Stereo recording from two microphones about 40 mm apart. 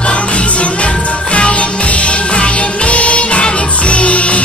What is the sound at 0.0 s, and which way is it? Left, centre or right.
Music, left.